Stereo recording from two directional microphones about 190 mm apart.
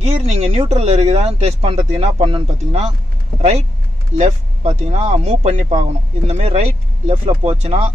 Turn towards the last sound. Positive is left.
turn(degrees=-30)  # may be behind; listen again after turning